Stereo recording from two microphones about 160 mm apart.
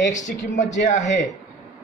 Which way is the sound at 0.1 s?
50° left (ahead or behind).